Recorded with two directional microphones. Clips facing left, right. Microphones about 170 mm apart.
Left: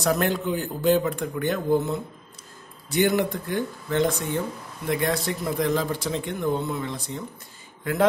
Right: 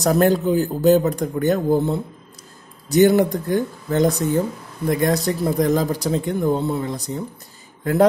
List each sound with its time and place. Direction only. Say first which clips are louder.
0.0 s a man's voice: right 7 dB; 40° right (ahead or behind)